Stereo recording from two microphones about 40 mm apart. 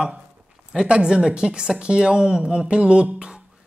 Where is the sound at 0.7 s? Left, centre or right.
Right.